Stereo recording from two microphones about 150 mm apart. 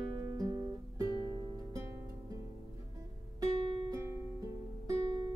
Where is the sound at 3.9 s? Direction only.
20° right (ahead or behind).